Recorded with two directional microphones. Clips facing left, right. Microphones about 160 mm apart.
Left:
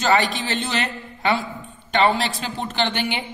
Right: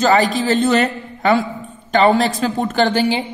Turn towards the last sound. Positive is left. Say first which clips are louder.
# right 8 dB
turn(degrees=-35)  # may be behind; listen again after turning